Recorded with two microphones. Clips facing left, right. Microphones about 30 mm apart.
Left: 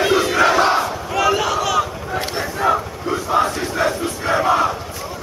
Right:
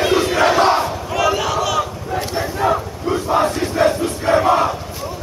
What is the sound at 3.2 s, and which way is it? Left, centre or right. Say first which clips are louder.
Crowd: even; right.